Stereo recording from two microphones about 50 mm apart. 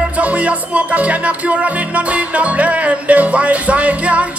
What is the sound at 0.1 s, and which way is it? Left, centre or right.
Music, right.